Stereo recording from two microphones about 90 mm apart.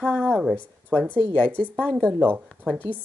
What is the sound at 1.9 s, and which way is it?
Speech, 15° right (ahead or behind).